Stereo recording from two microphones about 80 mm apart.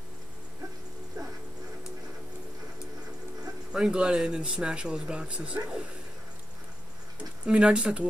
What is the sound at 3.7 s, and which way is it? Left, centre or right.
Speech, centre.